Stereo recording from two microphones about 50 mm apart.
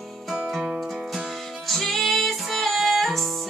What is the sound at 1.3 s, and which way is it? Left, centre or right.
Music, centre.